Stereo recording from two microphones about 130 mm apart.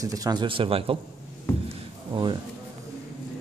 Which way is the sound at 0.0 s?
25° right (ahead or behind).